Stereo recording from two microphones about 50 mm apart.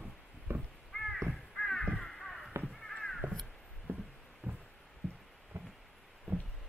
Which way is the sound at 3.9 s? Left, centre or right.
Right.